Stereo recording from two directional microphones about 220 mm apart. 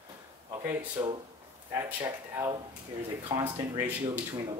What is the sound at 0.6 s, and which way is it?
Speech, 10° right (ahead or behind).